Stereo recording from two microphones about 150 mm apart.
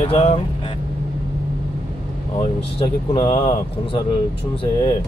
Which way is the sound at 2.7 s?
40° left (ahead or behind).